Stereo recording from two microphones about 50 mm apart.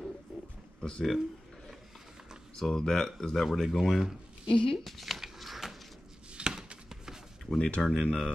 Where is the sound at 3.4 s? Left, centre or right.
Centre.